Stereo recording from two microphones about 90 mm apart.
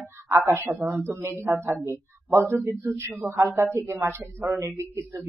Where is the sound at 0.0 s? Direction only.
25° right (ahead or behind).